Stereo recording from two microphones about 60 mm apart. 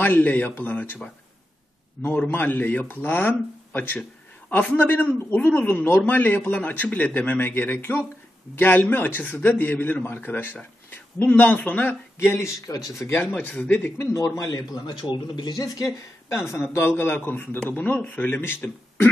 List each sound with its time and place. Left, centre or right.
0.0 s a man's voice: left
2.1 s a man's voice: left
12.2 s speech: left
12.6 s speech: left
13.1 s speech: left
14.1 s a man's voice: left
16.3 s speech: left
16.7 s a man's voice: left; by 18.8 s centre